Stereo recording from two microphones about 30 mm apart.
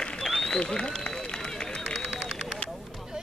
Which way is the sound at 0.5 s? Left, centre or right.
Left.